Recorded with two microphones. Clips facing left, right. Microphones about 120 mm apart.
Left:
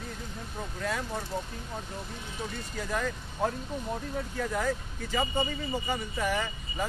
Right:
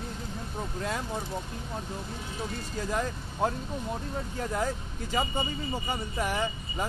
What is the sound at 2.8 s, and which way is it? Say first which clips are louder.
Speech: right 1 dB; 20° right (ahead or behind).